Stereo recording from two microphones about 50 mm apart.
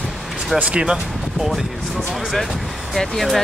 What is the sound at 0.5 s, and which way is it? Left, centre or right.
Speech, right.